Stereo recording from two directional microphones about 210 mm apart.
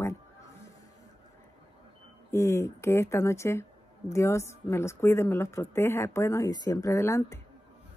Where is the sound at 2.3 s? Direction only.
15° left (ahead or behind).